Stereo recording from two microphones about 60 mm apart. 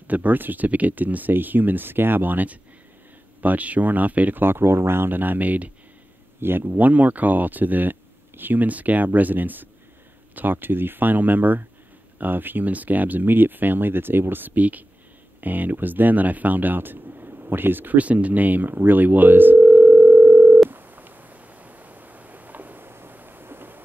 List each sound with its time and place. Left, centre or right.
0.1 s speech: right
18.8 s dial tone: right
20.7 s a sound: right